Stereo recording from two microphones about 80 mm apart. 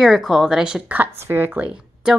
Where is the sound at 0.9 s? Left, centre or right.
Right.